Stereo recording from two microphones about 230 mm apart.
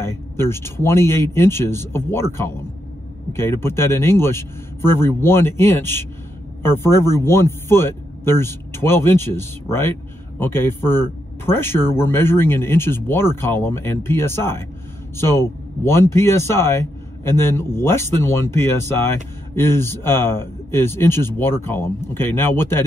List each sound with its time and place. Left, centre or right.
0.0 s speech: centre